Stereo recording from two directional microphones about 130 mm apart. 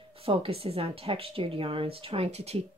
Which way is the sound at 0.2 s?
45° right (ahead or behind).